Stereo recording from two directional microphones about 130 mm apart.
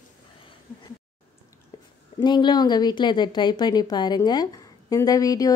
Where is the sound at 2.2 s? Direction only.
35° left (ahead or behind).